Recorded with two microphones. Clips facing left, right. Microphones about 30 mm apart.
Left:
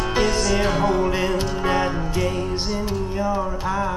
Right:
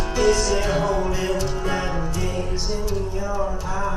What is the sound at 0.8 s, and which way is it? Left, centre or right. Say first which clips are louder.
Music: left 3 dB; left.